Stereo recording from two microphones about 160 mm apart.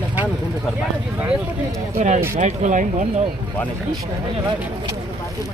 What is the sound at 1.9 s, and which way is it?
Speech, 50° right (ahead or behind).